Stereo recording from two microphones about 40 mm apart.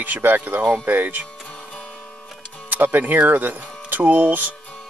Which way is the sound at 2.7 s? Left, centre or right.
Right.